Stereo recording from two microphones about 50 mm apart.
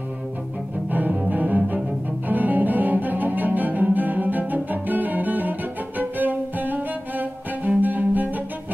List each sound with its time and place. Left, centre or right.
0.8 s cello: right